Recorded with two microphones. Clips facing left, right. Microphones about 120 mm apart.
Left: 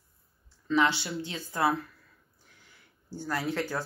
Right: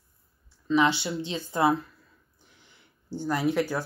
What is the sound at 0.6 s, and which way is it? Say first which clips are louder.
Speech: right 3 dB; 15° right (ahead or behind).